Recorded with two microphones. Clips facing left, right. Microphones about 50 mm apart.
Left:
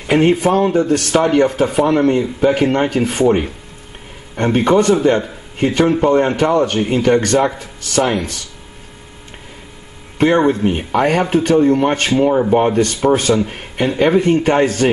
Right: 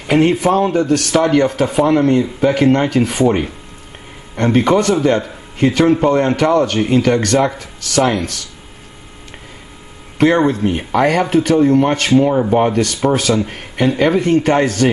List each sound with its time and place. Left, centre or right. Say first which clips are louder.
0.0 s speech: even; centre
0.7 s speech: even; centre
2.0 s speech: right 1 dB; left
5.0 s speech: left 1 dB; centre
5.8 s speech: right 1 dB; centre
6.0 s speech: even; centre
10.1 s speech: right 1 dB; centre
10.4 s speech: left 1 dB; centre
11.1 s speech: even; centre